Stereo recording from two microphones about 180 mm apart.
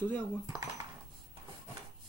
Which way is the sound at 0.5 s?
20° right (ahead or behind).